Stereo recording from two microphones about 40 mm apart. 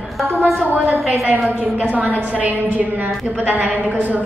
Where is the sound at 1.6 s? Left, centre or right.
Right.